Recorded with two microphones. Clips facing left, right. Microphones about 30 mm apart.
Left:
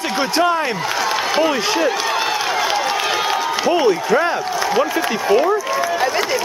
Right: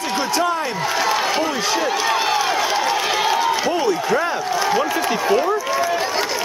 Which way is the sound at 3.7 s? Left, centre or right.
Left.